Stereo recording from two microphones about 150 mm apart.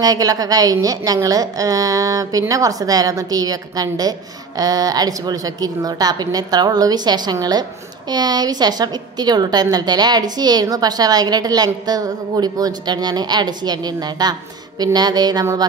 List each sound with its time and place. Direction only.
0.0 s a woman's voice: 25° right (ahead or behind)